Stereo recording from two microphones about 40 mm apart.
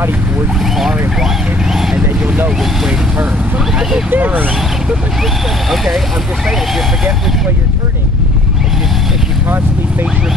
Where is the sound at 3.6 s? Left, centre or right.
Centre.